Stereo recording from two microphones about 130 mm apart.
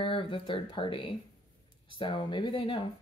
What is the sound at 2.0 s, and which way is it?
Speech, 40° left (ahead or behind).